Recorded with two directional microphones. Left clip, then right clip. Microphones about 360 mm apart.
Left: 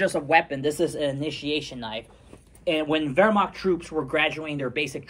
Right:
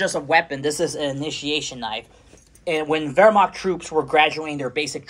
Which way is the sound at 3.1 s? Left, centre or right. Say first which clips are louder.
Right 8 dB; centre.